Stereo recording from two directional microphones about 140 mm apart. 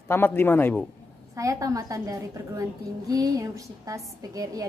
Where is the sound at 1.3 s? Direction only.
25° right (ahead or behind).